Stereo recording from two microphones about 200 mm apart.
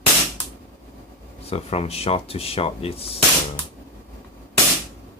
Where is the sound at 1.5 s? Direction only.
30° left (ahead or behind).